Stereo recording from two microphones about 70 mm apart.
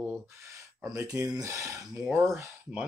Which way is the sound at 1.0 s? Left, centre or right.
Right.